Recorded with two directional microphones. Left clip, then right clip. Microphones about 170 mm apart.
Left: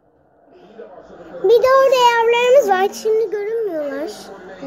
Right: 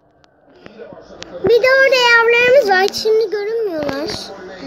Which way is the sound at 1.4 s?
15° left (ahead or behind).